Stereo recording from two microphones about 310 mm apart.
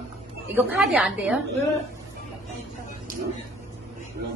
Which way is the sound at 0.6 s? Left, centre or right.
Centre.